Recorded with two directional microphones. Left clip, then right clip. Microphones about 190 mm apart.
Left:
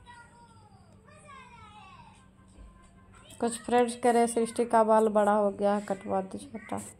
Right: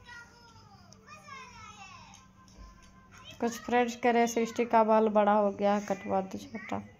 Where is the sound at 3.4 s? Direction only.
25° left (ahead or behind).